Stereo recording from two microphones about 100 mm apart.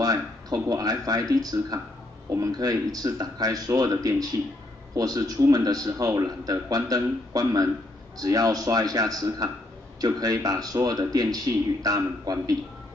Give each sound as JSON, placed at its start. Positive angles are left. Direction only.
{"t": 0.0, "sound": "a man's voice", "side_deg": -40}